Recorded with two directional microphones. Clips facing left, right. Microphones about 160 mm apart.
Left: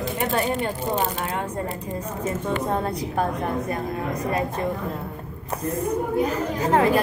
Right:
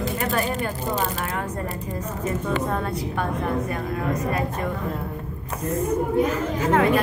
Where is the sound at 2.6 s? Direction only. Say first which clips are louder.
Left 1 dB; 35° left (ahead or behind).